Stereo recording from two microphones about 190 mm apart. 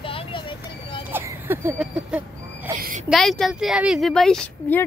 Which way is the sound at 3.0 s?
Centre (ahead or behind).